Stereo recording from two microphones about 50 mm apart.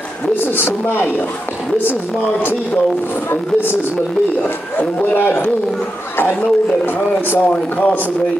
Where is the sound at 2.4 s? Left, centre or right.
Left.